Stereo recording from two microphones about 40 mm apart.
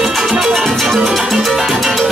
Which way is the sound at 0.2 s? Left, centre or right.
Centre.